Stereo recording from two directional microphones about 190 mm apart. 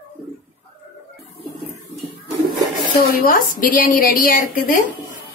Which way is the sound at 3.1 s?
50° left (ahead or behind).